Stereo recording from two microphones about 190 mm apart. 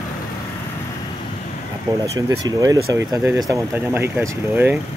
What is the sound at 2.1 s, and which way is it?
Speech, 20° right (ahead or behind).